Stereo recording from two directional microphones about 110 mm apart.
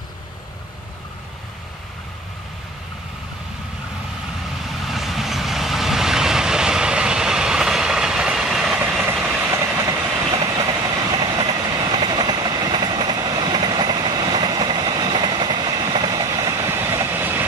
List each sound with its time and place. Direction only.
4.6 s vehicle: centre (ahead or behind)
9.5 s train: 30° right (ahead or behind)